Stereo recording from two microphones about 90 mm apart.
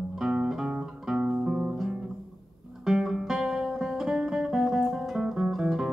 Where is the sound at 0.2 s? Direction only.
5° right (ahead or behind).